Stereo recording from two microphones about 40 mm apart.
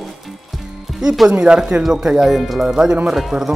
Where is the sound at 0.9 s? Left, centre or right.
Centre.